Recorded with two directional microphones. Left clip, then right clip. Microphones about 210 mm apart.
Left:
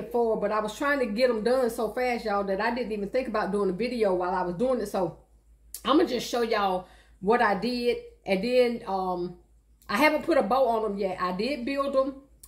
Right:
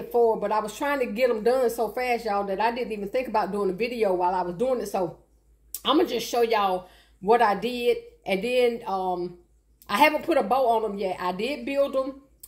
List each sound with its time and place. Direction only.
0.1 s a woman's voice: 5° left (ahead or behind)
9.0 s speech: 15° left (ahead or behind)